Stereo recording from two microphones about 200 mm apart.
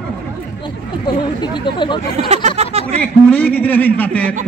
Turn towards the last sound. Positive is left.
turn(degrees=5)  # may be behind; listen again after turning